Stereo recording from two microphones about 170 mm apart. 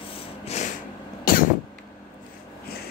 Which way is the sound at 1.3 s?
55° left (ahead or behind).